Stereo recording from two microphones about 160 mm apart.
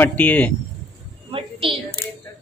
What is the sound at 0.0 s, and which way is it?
Speech, 10° left (ahead or behind).